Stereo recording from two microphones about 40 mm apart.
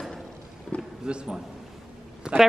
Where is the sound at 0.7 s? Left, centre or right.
Left.